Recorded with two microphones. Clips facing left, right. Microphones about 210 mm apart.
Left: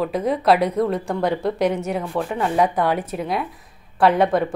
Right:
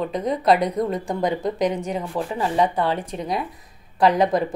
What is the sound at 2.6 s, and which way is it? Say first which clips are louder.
A woman's voice: left 2 dB; 10° left (ahead or behind).